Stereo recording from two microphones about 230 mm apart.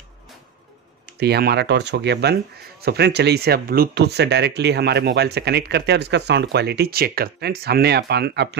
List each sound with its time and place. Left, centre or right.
1.2 s speech: right